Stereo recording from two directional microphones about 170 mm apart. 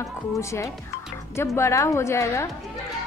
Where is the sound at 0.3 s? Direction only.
15° left (ahead or behind).